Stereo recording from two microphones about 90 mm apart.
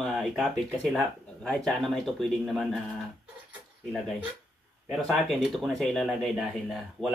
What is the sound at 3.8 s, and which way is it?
Speech, 5° left (ahead or behind).